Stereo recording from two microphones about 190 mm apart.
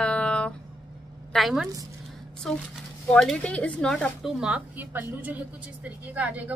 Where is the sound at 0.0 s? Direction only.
5° left (ahead or behind).